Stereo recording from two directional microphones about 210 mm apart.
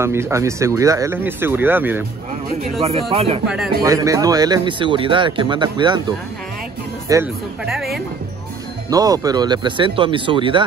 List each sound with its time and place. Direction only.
0.0 s speech: 10° right (ahead or behind)
2.8 s speech: 30° right (ahead or behind)
3.8 s speech: 15° right (ahead or behind)
7.6 s speech: centre (ahead or behind)
8.9 s speech: 15° right (ahead or behind)